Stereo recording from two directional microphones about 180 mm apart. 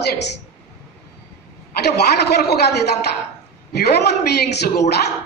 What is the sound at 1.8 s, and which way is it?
A man's voice, 65° left (ahead or behind).